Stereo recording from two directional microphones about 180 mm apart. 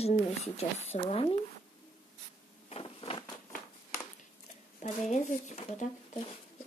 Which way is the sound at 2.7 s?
30° left (ahead or behind).